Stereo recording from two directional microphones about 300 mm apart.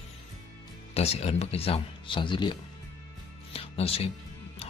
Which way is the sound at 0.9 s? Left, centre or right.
Left.